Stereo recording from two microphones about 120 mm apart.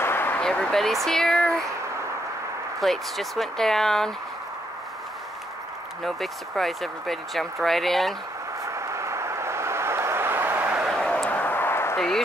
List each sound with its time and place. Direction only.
0.0 s a sound: 20° left (ahead or behind)
0.4 s speech: 5° left (ahead or behind)
2.8 s speech: centre (ahead or behind)
6.0 s speech: centre (ahead or behind)
8.6 s vehicle: 25° right (ahead or behind)
11.0 s a sound: 5° left (ahead or behind)